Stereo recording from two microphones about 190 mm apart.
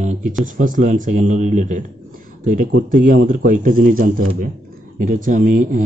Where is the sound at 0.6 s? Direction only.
40° right (ahead or behind).